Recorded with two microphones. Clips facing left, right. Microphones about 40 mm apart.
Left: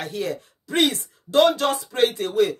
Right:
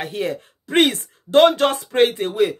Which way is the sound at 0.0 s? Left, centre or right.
Right.